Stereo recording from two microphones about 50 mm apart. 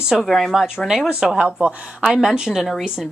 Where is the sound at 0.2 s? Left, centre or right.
Centre.